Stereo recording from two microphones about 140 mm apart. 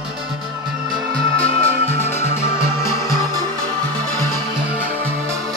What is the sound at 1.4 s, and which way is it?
Music, 15° left (ahead or behind).